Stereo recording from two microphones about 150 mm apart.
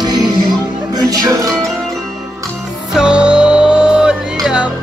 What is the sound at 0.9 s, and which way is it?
Music, 25° right (ahead or behind).